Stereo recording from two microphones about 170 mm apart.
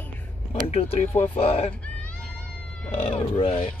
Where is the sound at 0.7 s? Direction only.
35° left (ahead or behind).